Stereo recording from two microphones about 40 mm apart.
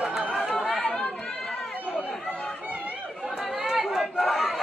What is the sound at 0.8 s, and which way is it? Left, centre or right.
Chatter, centre.